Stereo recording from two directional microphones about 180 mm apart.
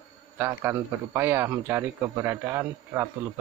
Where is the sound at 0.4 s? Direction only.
15° right (ahead or behind).